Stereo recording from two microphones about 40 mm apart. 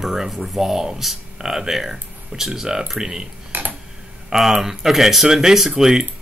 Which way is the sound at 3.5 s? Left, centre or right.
Right.